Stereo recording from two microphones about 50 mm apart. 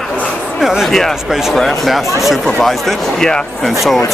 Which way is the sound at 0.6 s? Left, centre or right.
Centre.